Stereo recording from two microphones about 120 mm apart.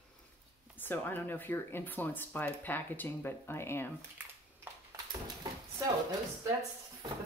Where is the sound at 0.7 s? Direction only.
15° left (ahead or behind).